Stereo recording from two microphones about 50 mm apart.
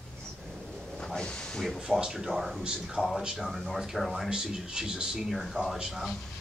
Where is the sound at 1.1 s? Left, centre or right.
Centre.